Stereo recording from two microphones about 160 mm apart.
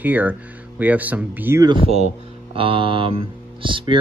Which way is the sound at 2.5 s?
35° right (ahead or behind).